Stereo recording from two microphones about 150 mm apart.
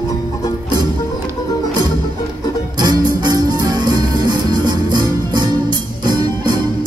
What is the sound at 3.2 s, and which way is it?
Music, 30° right (ahead or behind).